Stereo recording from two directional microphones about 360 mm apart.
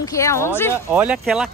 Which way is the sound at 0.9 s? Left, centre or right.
Centre.